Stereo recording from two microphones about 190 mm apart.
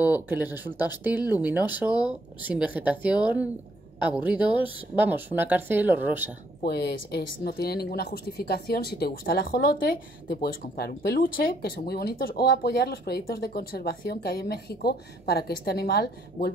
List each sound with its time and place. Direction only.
0.0 s speech: 10° right (ahead or behind)
6.6 s speech: 60° left (ahead or behind)